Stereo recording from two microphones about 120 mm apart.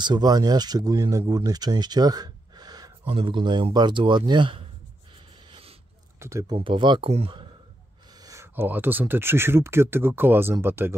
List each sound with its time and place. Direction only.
0.0 s speech: 35° right (ahead or behind)
3.1 s speech: 45° right (ahead or behind)
5.5 s a sound: 55° right (ahead or behind)
6.1 s a sound: 25° right (ahead or behind)
6.4 s speech: 45° right (ahead or behind)
8.2 s speech: 25° right (ahead or behind)